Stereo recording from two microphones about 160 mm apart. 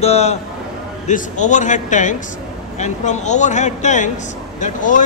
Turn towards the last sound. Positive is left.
turn(degrees=55)  # may be behind; listen again after turning